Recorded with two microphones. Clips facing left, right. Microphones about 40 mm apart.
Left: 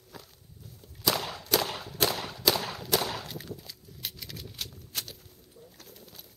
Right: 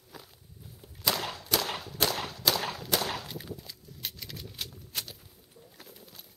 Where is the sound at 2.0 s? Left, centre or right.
Centre.